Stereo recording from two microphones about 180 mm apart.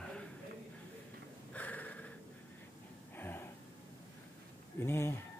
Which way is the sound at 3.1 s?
10° left (ahead or behind).